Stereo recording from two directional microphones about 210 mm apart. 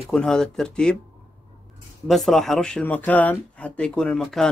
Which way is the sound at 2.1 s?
Centre (ahead or behind).